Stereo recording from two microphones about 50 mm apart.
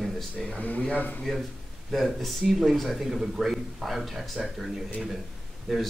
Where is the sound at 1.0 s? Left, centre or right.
Left.